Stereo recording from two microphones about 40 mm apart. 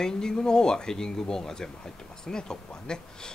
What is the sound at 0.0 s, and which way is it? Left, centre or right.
Speech, centre.